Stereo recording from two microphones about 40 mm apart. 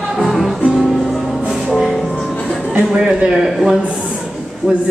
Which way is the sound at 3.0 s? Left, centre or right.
Centre.